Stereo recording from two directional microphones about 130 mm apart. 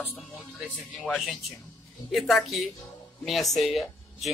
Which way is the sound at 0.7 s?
Centre (ahead or behind).